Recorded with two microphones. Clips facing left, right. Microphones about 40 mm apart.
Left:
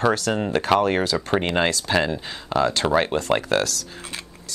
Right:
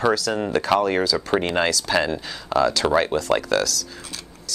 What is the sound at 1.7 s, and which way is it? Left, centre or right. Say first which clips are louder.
Speech: even; left.